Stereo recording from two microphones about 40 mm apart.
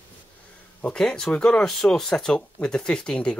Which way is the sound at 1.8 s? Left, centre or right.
Centre.